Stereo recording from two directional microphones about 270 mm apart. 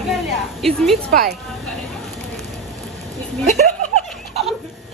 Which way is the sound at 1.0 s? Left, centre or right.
Right.